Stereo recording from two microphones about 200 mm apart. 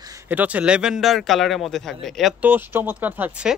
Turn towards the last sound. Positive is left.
turn(degrees=-5)  # may be behind; listen again after turning